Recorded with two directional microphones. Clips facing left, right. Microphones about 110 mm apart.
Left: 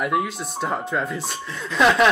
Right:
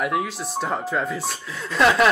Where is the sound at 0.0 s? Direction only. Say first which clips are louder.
Left 1 dB; centre (ahead or behind).